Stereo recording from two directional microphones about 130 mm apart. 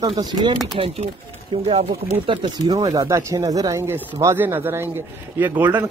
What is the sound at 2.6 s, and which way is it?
Speech, 30° right (ahead or behind).